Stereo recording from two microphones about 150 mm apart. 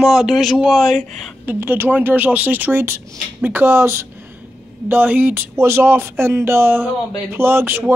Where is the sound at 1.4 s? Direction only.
10° right (ahead or behind).